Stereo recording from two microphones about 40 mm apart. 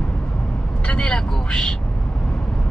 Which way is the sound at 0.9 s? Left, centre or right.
Left.